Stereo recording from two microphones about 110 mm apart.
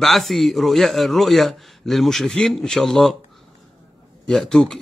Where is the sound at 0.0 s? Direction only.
Centre (ahead or behind).